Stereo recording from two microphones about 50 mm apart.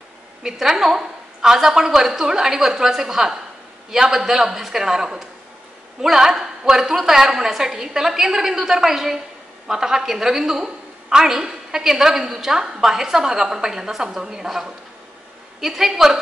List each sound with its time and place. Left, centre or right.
0.4 s a woman's voice: centre